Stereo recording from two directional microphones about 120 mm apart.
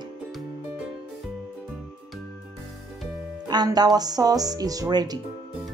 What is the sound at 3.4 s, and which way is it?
Speech, 35° right (ahead or behind).